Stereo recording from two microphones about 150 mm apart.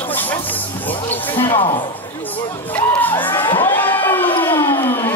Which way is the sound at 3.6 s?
15° left (ahead or behind).